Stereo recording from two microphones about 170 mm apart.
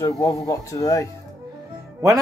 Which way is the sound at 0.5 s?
20° left (ahead or behind).